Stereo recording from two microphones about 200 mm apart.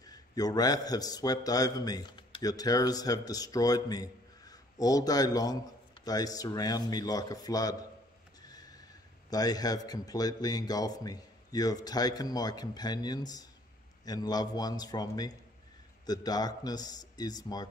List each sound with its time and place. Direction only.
0.0 s a man's voice: 20° left (ahead or behind)
8.4 s a sound: 20° left (ahead or behind)
9.3 s a man's voice: 20° left (ahead or behind)